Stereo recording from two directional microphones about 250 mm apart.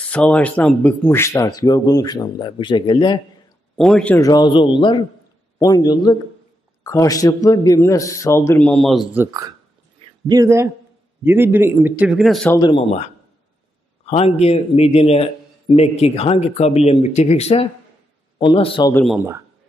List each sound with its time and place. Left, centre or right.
0.1 s speech: centre
3.7 s a man's voice: centre
12.5 s speech: centre
19.1 s a man's voice: centre